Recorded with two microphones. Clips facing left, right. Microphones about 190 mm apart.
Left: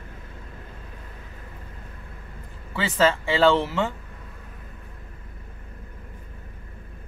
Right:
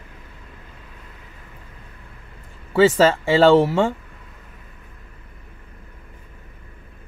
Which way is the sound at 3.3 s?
40° right (ahead or behind).